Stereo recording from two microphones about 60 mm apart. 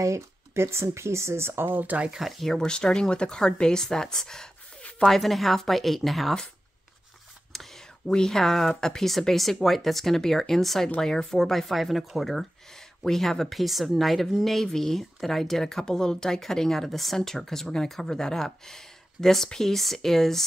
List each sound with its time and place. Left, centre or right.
0.0 s speech: right
2.0 s speech: centre
7.5 s speech: centre